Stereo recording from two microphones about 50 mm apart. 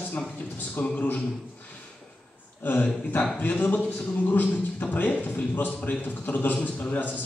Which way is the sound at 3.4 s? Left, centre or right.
Left.